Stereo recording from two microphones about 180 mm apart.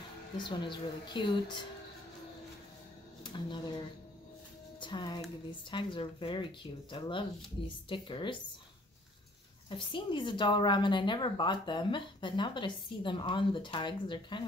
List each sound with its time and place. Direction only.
0.4 s a woman's voice: 25° left (ahead or behind)
3.3 s speech: 25° left (ahead or behind)
4.7 s a woman's voice: 25° left (ahead or behind)
9.7 s a woman's voice: 25° left (ahead or behind)